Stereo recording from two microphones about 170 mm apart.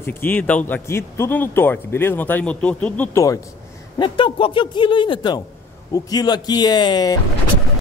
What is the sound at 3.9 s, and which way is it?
A man's voice, 30° left (ahead or behind).